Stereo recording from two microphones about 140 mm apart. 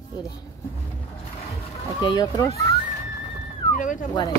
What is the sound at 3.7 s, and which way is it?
Speech, 70° left (ahead or behind).